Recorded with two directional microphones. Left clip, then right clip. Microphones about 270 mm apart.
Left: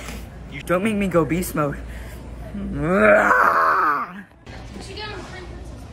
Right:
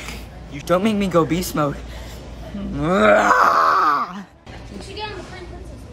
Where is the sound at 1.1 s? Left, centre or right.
Centre.